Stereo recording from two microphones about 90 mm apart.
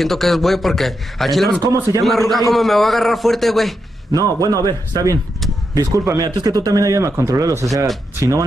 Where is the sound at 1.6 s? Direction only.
40° right (ahead or behind).